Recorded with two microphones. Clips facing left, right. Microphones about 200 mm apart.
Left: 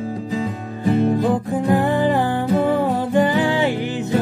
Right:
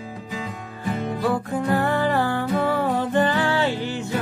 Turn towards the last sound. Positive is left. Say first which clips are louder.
# left 3 dB
turn(degrees=15)  # may be behind; listen again after turning